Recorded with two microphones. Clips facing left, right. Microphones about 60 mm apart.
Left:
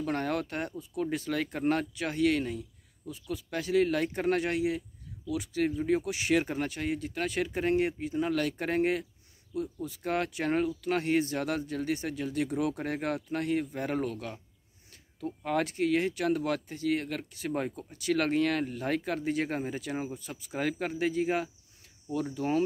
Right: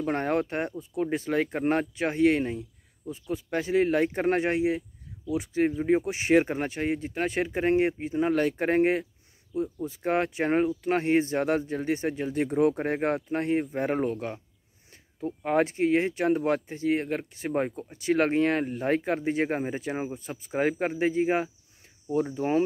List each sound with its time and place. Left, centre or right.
0.0 s speech: right